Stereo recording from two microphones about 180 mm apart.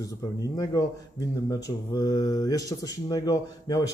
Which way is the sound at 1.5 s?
20° left (ahead or behind).